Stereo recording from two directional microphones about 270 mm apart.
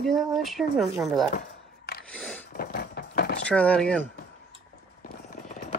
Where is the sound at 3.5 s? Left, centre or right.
Centre.